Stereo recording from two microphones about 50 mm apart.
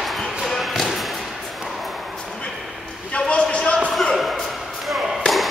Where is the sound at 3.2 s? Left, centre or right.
Left.